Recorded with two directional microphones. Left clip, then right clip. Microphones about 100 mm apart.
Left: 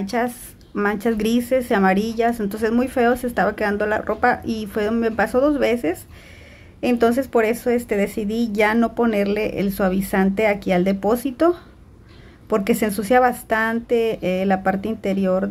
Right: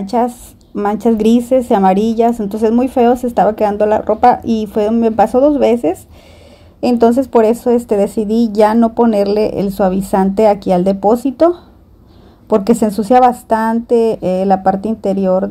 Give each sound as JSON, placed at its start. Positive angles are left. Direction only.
{"t": 0.0, "sound": "a woman's voice", "side_deg": -25}
{"t": 2.3, "sound": "a woman's voice", "side_deg": -20}
{"t": 5.7, "sound": "a woman's voice", "side_deg": -35}
{"t": 9.1, "sound": "a woman's voice", "side_deg": -30}
{"t": 12.4, "sound": "a woman's voice", "side_deg": -20}